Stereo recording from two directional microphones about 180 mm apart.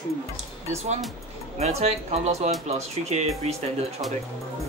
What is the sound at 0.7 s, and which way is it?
Speech, 40° right (ahead or behind).